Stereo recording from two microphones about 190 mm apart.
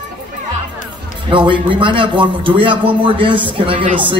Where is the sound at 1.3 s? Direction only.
25° right (ahead or behind).